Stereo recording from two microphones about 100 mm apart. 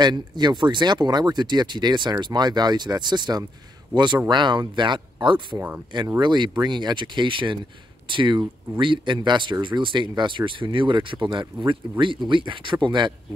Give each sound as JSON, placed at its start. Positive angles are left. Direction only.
{"t": 0.0, "sound": "speech", "side_deg": -45}